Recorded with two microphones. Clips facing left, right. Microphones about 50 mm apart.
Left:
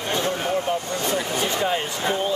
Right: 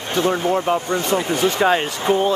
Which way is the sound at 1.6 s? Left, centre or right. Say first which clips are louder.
Right 6 dB; right.